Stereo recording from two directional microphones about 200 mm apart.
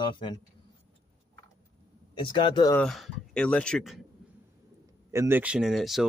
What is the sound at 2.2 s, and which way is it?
Speech, 25° left (ahead or behind).